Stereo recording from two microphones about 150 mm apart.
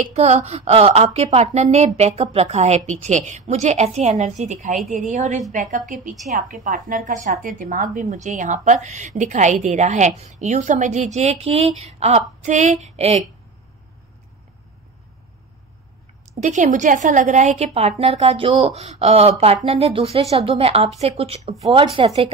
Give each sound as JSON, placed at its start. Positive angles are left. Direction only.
{"t": 0.0, "sound": "a woman's voice", "side_deg": -45}
{"t": 16.3, "sound": "a woman's voice", "side_deg": -55}